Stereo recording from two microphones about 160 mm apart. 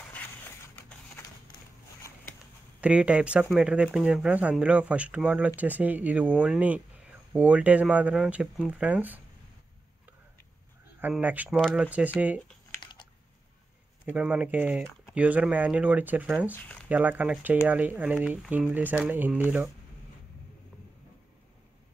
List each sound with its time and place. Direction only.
2.8 s speech: 10° right (ahead or behind)
11.0 s speech: 10° right (ahead or behind)
12.8 s typing: 30° left (ahead or behind)
14.0 s speech: 10° right (ahead or behind)